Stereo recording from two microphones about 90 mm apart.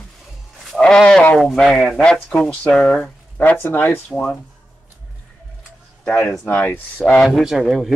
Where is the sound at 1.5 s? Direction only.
5° left (ahead or behind).